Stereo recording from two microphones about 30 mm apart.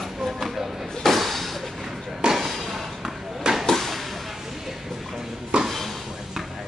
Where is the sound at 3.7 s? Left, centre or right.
Centre.